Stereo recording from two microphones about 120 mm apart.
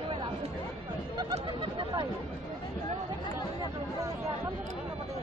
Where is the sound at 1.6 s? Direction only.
40° right (ahead or behind).